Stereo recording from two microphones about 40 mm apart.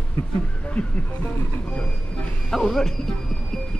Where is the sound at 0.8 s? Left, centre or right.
Left.